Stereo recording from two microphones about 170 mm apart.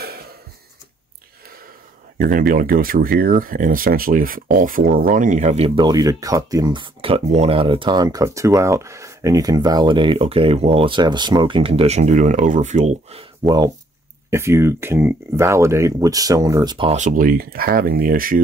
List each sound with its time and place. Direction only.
2.1 s speech: 55° right (ahead or behind)
5.8 s speech: 20° right (ahead or behind)
14.3 s speech: 15° right (ahead or behind)
16.7 s speech: 30° right (ahead or behind)
17.0 s speech: 50° right (ahead or behind)